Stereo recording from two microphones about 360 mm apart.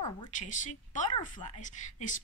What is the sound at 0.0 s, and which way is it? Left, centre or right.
A woman's voice, centre.